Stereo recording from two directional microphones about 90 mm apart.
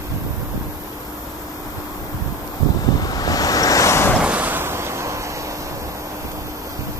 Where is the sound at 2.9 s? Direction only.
45° left (ahead or behind).